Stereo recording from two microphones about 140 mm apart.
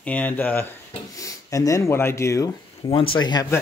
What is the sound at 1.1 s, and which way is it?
Speech, 25° left (ahead or behind).